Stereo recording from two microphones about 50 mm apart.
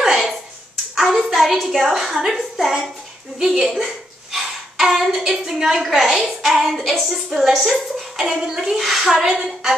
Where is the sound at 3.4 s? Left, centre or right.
Centre.